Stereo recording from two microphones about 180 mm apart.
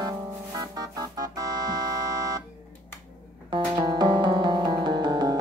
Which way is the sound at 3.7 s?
25° right (ahead or behind).